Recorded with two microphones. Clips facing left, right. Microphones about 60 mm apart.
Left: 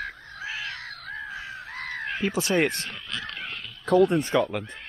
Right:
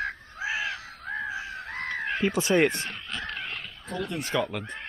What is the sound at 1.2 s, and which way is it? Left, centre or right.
Crow, centre.